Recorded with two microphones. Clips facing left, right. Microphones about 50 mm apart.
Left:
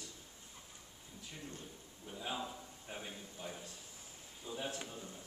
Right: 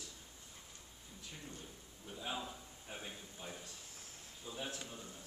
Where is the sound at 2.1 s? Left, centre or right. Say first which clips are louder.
Left 1 dB; centre.